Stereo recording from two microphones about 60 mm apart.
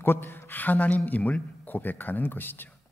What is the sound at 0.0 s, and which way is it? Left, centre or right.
A man's voice, left.